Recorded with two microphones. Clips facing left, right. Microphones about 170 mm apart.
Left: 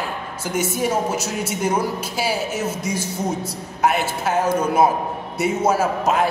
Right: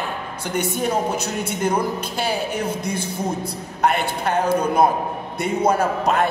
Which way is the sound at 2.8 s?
60° right (ahead or behind).